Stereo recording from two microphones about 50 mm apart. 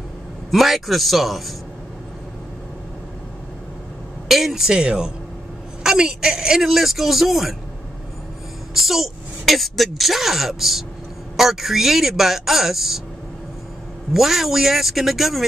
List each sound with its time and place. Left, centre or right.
0.5 s speech: centre
4.3 s speech: centre
4.7 s speech: centre
8.7 s speech: centre
14.1 s speech: centre